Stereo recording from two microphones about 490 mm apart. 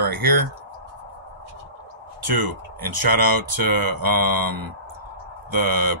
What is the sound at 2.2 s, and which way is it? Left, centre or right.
Speech, right.